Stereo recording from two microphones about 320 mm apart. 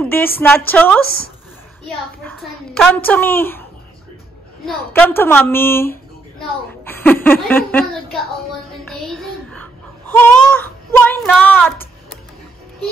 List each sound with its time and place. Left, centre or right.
0.0 s a child's voice: centre
1.0 s speech: left
1.9 s a child's voice: centre
4.6 s a woman's voice: centre
8.8 s a sound: centre